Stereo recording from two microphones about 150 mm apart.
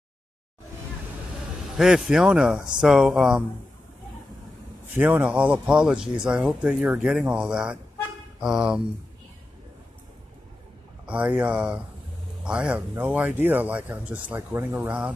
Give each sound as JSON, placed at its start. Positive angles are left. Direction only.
{"t": 1.8, "sound": "speech", "side_deg": -5}
{"t": 4.9, "sound": "speech", "side_deg": -10}
{"t": 11.1, "sound": "speech", "side_deg": -10}